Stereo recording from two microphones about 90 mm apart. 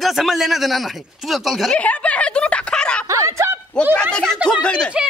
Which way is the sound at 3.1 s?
35° right (ahead or behind).